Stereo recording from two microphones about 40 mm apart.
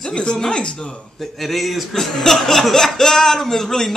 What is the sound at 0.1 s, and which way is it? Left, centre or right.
Speech, left.